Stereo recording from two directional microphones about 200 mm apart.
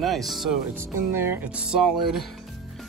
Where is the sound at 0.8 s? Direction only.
10° right (ahead or behind).